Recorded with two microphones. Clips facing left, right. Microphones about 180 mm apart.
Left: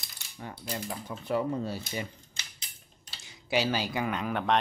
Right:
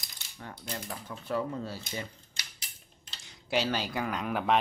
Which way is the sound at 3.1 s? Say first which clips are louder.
Left 2 dB; 5° left (ahead or behind).